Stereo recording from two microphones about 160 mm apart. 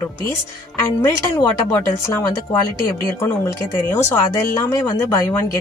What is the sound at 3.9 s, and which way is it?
Speech, 15° left (ahead or behind).